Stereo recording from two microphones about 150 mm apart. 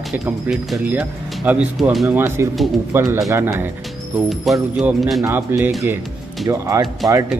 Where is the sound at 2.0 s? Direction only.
15° right (ahead or behind).